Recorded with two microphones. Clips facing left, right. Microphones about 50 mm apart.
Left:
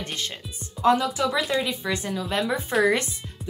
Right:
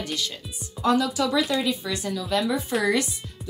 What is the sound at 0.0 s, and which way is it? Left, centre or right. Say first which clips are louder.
Speech: right 2 dB; left.